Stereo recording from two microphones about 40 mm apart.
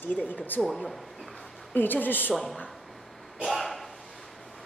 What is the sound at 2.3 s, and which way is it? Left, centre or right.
Speech, centre.